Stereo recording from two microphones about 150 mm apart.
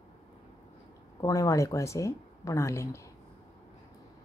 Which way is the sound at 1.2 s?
20° left (ahead or behind).